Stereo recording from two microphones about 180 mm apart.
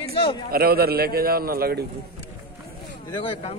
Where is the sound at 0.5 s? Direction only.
60° right (ahead or behind).